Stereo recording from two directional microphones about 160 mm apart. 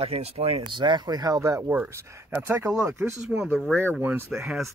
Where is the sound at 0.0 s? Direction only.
40° right (ahead or behind).